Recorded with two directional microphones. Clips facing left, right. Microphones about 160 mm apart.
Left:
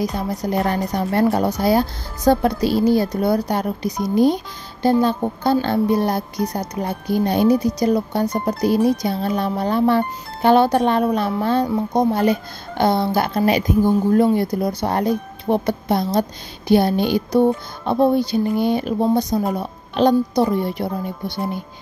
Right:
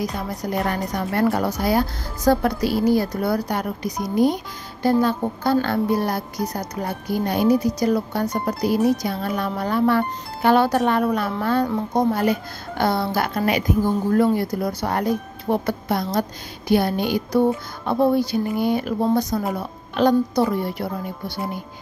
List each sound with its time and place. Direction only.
0.4 s speech: 30° left (ahead or behind)
5.0 s speech: 25° left (ahead or behind)